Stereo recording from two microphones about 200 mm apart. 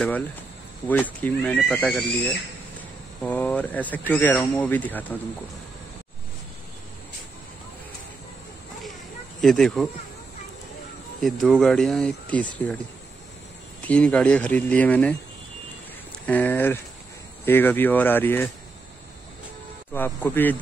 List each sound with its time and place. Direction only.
0.8 s speech: 10° left (ahead or behind)
9.4 s speech: centre (ahead or behind)
11.1 s speech: centre (ahead or behind)
13.7 s speech: 5° left (ahead or behind)
16.3 s speech: 10° left (ahead or behind)
19.9 s speech: 10° left (ahead or behind)